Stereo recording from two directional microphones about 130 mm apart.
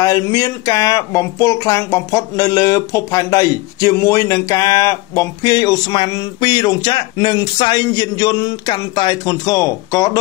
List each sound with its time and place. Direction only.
0.0 s speech: 25° left (ahead or behind)